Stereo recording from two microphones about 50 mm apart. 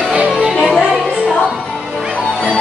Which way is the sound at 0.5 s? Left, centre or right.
Centre.